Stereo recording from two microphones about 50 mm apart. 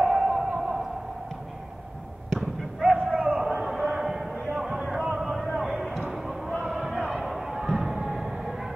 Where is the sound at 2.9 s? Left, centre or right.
Right.